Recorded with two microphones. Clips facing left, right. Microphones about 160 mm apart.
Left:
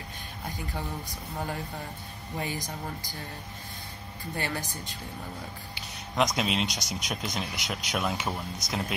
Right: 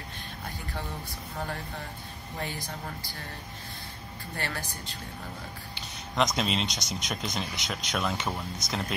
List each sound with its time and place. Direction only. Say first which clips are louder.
2.3 s speech: left 3 dB; 15° left (ahead or behind)
4.4 s speech: left 2 dB; 15° left (ahead or behind)
5.8 s speech: left 1 dB; 5° left (ahead or behind)